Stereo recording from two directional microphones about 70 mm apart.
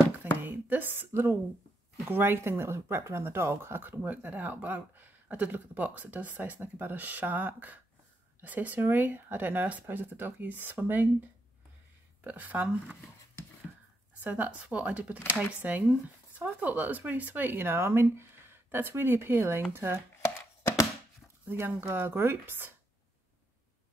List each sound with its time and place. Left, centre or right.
0.4 s a sound: right
2.0 s speech: right
12.2 s speech: right
14.2 s speech: right
21.5 s speech: right